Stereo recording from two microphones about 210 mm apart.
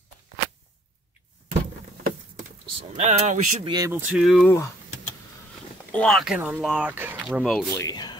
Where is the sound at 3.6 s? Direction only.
20° right (ahead or behind).